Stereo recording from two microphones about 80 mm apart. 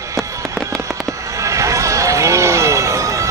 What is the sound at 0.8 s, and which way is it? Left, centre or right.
Fireworks, right.